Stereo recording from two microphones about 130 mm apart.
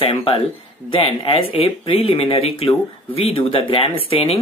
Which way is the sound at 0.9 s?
45° left (ahead or behind).